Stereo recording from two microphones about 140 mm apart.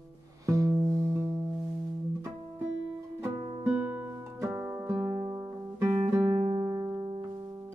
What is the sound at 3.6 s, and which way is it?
Music, 20° right (ahead or behind).